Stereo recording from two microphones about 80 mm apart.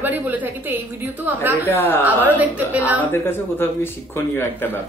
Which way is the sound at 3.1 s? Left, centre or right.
Left.